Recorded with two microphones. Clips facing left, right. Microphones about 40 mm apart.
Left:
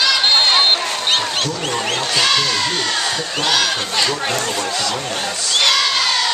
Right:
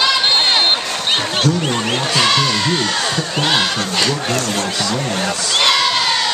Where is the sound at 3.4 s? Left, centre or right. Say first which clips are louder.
Even; centre.